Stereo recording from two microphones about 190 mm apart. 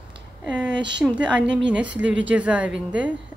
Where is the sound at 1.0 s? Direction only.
5° right (ahead or behind).